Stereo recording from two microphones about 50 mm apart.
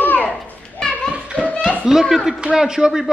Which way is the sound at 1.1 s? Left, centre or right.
Right.